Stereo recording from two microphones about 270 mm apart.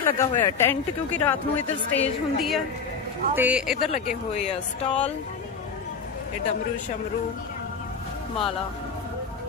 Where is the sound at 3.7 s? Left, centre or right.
Left.